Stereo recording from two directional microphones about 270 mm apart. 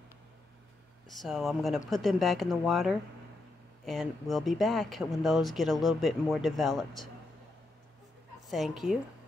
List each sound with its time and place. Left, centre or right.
1.0 s speech: centre
8.5 s speech: centre